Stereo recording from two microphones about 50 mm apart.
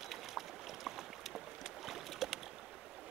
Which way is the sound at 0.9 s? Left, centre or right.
Centre.